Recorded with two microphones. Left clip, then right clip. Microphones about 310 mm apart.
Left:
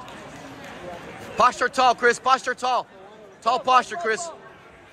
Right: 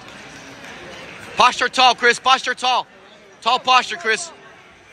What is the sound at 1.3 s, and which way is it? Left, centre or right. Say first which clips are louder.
A man's voice: right 4 dB; centre.